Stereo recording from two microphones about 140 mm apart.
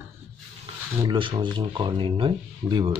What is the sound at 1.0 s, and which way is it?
Speech, 35° right (ahead or behind).